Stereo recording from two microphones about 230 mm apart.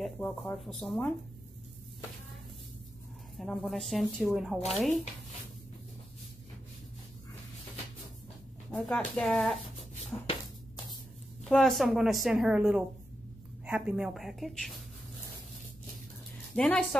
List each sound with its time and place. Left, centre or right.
0.0 s a woman's voice: centre
3.3 s a woman's voice: centre
8.7 s a woman's voice: centre
10.1 s a sound: centre
11.4 s a woman's voice: centre
16.5 s a woman's voice: centre